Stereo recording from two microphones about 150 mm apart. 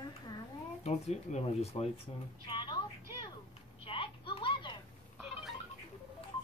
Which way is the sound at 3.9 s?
35° left (ahead or behind).